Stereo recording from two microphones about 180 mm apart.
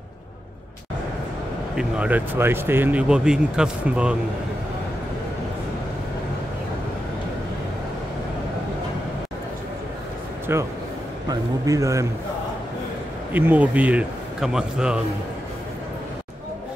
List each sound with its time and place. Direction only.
1.8 s speech: 10° right (ahead or behind)
10.5 s a man's voice: 15° right (ahead or behind)
13.3 s speech: 10° right (ahead or behind)